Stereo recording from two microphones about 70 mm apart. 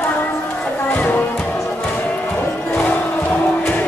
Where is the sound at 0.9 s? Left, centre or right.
Left.